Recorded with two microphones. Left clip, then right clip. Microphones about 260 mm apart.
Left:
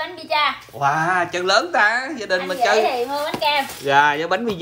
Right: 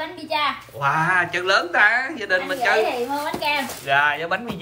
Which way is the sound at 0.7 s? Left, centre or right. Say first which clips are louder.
Even; centre.